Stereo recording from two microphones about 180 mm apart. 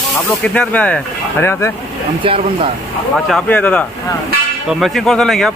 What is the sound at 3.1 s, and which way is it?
Speech, centre (ahead or behind).